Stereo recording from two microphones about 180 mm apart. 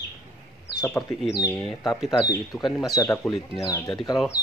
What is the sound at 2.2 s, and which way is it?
Speech, 20° left (ahead or behind).